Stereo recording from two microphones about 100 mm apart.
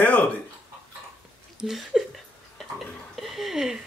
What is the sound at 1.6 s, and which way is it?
Speech, 5° right (ahead or behind).